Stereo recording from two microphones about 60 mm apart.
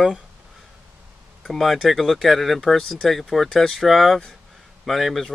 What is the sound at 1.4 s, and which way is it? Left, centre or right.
Speech, centre.